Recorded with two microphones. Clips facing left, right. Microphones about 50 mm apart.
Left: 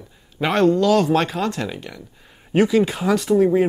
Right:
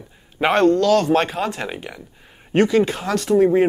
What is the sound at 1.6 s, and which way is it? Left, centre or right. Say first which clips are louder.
Speech: right 1 dB; right.